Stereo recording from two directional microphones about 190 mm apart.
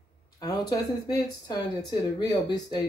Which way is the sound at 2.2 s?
20° left (ahead or behind).